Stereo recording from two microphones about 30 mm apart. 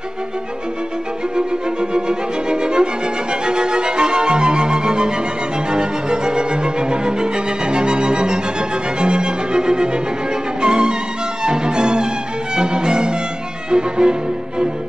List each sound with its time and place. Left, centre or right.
1.3 s music: right
10.6 s violin: right
11.4 s music: right